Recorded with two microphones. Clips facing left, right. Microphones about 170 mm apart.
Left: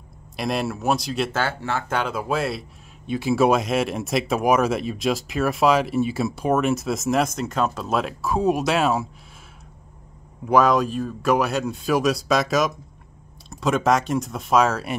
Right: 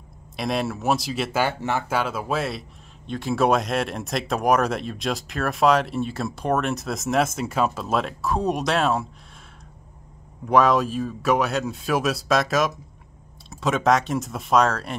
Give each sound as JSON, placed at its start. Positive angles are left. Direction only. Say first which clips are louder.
{"t": 0.4, "sound": "speech", "louder": "even", "side_deg": 0}
{"t": 1.4, "sound": "speech", "louder": "right 2 dB", "side_deg": -15}
{"t": 2.0, "sound": "speech", "louder": "left 1 dB", "side_deg": -5}
{"t": 10.4, "sound": "speech", "louder": "left 1 dB", "side_deg": 0}